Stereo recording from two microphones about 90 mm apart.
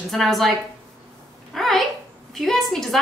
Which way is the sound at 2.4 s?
5° left (ahead or behind).